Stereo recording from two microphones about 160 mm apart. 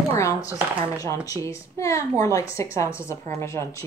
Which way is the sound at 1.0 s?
20° left (ahead or behind).